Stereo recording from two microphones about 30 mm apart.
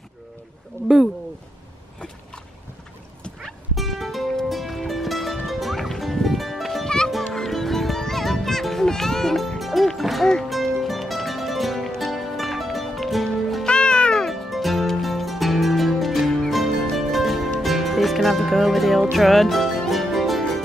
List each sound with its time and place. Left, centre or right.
3.7 s music: centre
6.8 s music: left
7.3 s music: centre
9.6 s music: centre
13.7 s music: left
14.3 s music: centre